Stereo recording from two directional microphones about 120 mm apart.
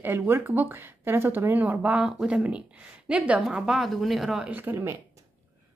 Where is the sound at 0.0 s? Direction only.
20° right (ahead or behind); by 4.5 s 5° right (ahead or behind).